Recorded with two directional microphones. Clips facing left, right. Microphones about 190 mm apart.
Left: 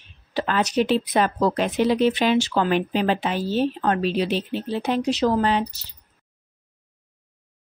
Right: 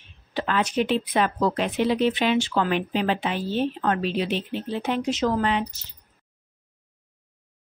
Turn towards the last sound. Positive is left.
turn(degrees=35)  # may be behind; listen again after turning